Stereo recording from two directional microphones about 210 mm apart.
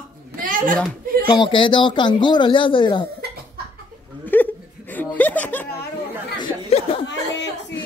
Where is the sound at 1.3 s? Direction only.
20° left (ahead or behind).